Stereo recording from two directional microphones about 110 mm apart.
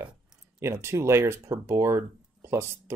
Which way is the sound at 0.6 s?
25° right (ahead or behind).